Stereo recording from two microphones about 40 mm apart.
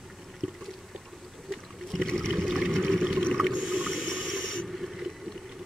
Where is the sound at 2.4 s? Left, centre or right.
Centre.